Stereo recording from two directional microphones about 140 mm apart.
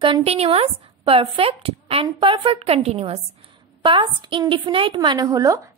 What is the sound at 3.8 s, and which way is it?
A woman's voice, 35° right (ahead or behind).